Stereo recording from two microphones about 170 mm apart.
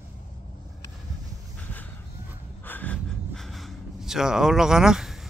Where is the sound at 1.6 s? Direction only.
10° left (ahead or behind).